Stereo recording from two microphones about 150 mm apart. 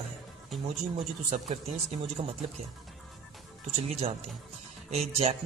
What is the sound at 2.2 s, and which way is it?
Speech, 55° right (ahead or behind).